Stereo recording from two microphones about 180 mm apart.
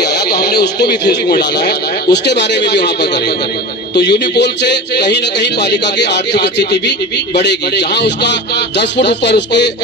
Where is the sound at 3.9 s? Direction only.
70° left (ahead or behind).